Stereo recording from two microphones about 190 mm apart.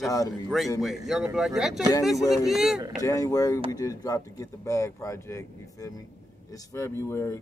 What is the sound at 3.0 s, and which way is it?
Speech, 15° left (ahead or behind).